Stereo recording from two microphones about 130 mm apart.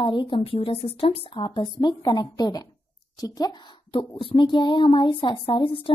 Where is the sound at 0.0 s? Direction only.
40° left (ahead or behind).